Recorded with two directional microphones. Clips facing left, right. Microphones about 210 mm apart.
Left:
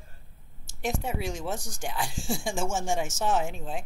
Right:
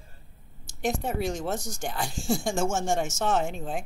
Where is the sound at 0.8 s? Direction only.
40° right (ahead or behind).